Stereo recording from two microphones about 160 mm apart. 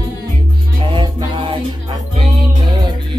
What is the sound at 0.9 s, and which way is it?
Music, 30° right (ahead or behind).